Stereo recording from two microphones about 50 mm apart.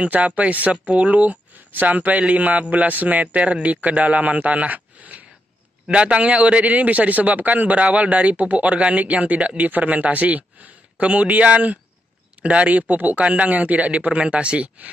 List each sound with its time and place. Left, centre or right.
0.0 s a man's voice: right